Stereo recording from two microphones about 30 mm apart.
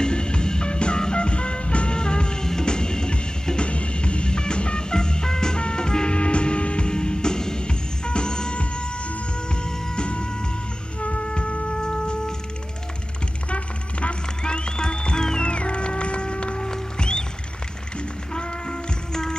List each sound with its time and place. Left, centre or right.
0.0 s music: left
2.0 s music: left
6.1 s music: left
6.9 s music: left
11.0 s flute: left
11.8 s a sound: left
13.5 s a sound: left
14.4 s music: left
15.4 s music: left
16.6 s music: left
18.3 s music: left